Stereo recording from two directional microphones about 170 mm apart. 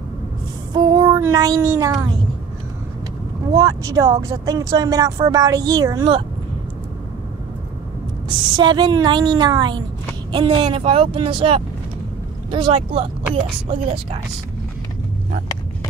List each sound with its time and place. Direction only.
0.7 s child singing: 25° right (ahead or behind)
3.5 s speech: 20° right (ahead or behind)
8.3 s speech: 25° right (ahead or behind)